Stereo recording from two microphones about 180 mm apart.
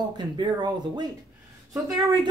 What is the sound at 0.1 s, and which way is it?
Speech, 25° right (ahead or behind).